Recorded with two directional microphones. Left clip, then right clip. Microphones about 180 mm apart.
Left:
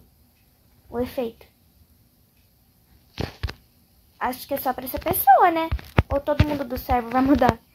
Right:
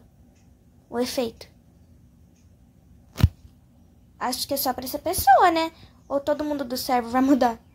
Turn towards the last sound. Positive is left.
turn(degrees=-15)  # may be behind; listen again after turning